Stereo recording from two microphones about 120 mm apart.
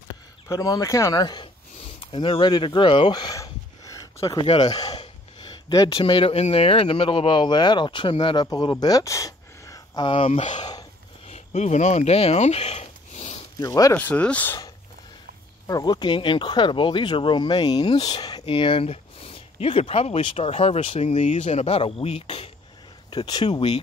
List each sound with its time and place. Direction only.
0.5 s speech: 30° left (ahead or behind)
2.0 s a sound: 45° left (ahead or behind)
4.6 s speech: 35° left (ahead or behind)
5.9 s speech: 45° left (ahead or behind); by 10.0 s 30° left (ahead or behind)
10.0 s speech: 50° left (ahead or behind)
10.4 s speech: 90° left
11.2 s a sound: 65° left (ahead or behind)
13.6 s speech: 30° left (ahead or behind)
13.9 s speech: 10° left (ahead or behind)
15.6 s speech: 35° left (ahead or behind)
18.4 s speech: 45° left (ahead or behind)
23.0 s speech: 40° left (ahead or behind)